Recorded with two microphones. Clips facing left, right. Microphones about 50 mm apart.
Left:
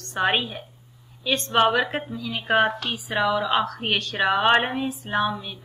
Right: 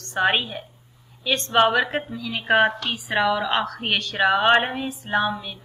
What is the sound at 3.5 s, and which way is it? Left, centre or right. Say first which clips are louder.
Speech: left 1 dB; centre.